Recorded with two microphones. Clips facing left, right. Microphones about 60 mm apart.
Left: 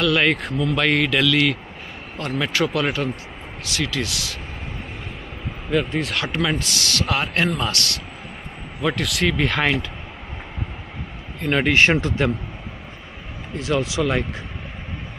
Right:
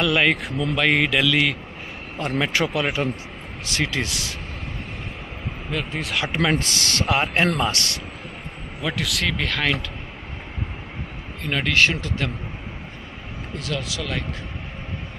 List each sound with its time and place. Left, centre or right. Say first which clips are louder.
0.2 s a man's voice: left 1 dB; centre
3.6 s speech: even; right
5.7 s speech: left 6 dB; centre
6.2 s speech: right 4 dB; right
6.6 s speech: even; right
8.8 s speech: left 4 dB; centre
11.4 s speech: left 3 dB; centre
13.6 s speech: left 8 dB; left